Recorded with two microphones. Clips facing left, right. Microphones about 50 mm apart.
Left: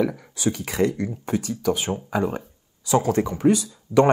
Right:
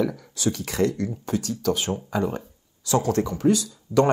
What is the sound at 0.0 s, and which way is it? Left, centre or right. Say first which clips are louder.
Speech: left 1 dB; left.